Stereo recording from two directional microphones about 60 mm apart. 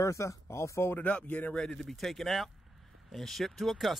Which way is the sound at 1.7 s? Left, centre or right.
Centre.